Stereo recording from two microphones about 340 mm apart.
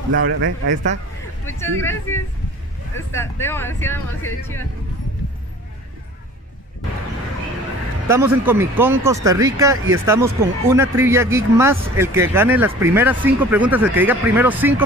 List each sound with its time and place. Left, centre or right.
0.1 s speech: right
1.4 s speech: centre
8.1 s speech: centre